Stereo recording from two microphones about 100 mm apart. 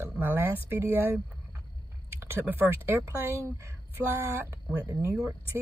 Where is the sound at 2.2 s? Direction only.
20° right (ahead or behind).